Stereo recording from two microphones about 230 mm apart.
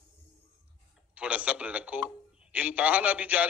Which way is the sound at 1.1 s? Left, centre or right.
Centre.